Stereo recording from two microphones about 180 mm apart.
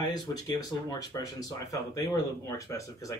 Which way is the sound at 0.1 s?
20° left (ahead or behind).